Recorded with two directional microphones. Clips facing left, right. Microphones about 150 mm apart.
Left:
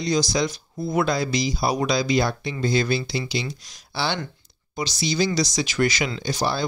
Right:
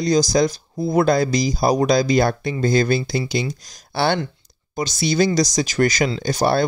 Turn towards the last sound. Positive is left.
turn(degrees=-50)  # may be behind; listen again after turning